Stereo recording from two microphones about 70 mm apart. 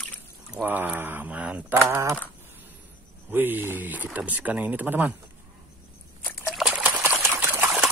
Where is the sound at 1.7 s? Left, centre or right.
Right.